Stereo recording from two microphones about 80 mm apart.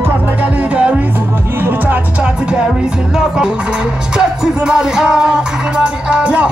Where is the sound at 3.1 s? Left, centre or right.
Centre.